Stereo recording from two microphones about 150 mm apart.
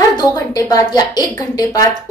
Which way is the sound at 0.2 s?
25° left (ahead or behind).